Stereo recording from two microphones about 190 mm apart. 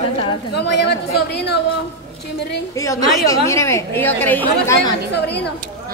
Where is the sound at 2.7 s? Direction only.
15° left (ahead or behind).